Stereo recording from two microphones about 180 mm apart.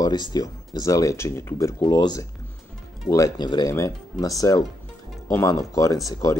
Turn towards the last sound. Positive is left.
turn(degrees=15)  # may be behind; listen again after turning